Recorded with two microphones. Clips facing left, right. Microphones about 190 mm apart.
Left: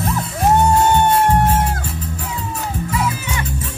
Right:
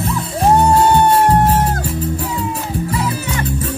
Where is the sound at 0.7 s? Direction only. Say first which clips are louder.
Right 2 dB; 35° right (ahead or behind).